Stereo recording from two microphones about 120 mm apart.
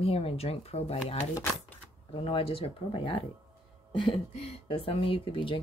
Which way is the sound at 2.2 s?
50° left (ahead or behind).